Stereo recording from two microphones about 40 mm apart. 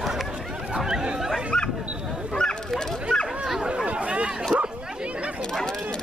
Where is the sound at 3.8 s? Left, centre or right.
Right.